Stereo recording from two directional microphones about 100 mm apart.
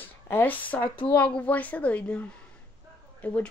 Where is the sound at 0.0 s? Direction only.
20° left (ahead or behind).